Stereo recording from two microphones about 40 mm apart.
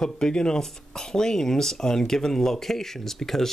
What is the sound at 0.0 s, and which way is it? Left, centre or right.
Speech, centre.